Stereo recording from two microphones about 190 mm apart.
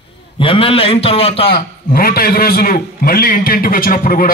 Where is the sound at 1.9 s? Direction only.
50° left (ahead or behind).